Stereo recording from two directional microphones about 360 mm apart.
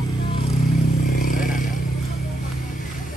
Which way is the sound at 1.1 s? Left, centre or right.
Left.